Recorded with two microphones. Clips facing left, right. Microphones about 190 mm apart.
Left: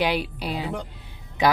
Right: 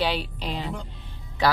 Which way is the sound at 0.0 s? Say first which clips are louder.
Left 2 dB; 10° left (ahead or behind).